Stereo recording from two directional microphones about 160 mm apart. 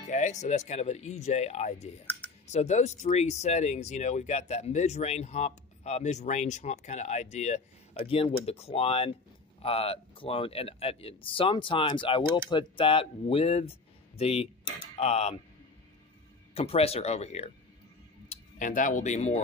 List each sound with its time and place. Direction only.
0.1 s speech: 50° left (ahead or behind)
16.5 s speech: 40° left (ahead or behind)
18.3 s speech: 55° left (ahead or behind)